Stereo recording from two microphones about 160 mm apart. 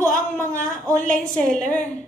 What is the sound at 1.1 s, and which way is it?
Speech, 5° left (ahead or behind).